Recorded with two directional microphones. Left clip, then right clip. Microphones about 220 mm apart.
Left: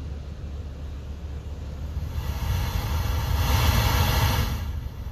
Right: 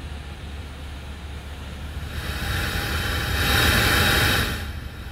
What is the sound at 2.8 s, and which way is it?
Vehicle, 30° right (ahead or behind).